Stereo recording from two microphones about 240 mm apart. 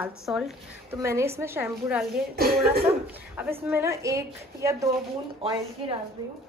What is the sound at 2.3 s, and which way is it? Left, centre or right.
Speech, right.